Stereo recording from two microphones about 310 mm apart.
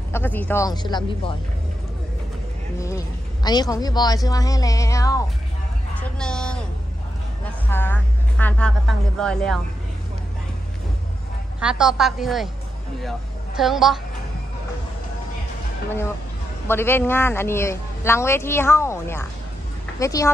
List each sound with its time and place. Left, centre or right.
0.1 s a woman's voice: centre
3.4 s a woman's voice: centre
11.6 s a woman's voice: centre
13.6 s a woman's voice: centre
16.6 s a woman's voice: centre